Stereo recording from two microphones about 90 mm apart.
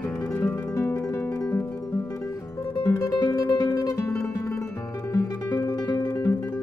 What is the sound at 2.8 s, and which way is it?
Music, 30° left (ahead or behind).